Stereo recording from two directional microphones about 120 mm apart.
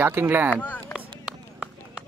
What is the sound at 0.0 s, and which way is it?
Speech, 15° right (ahead or behind).